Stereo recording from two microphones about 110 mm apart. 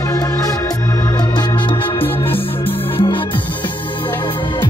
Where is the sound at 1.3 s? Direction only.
45° left (ahead or behind).